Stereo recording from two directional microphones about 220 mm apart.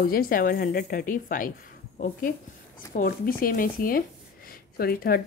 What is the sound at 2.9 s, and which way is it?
Speech, 40° left (ahead or behind).